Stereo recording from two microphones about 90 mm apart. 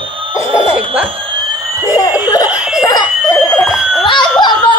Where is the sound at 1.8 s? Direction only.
40° left (ahead or behind).